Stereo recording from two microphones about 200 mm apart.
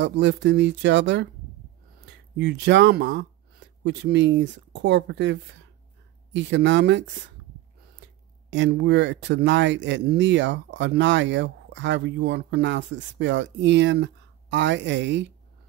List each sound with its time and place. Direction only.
0.0 s speech: 65° right (ahead or behind)
2.3 s speech: 60° right (ahead or behind)
8.0 s a sound: 60° right (ahead or behind)
8.5 s speech: 60° right (ahead or behind)